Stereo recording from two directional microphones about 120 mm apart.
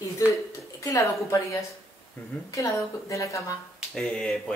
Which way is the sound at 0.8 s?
25° left (ahead or behind).